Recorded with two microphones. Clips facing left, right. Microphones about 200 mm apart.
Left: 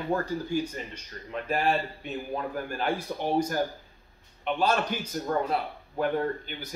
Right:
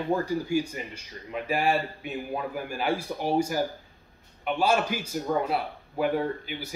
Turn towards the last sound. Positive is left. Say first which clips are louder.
# even
turn(degrees=-5)  # may be behind; listen again after turning